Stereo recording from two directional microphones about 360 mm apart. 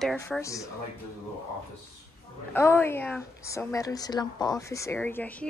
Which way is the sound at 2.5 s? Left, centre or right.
Centre.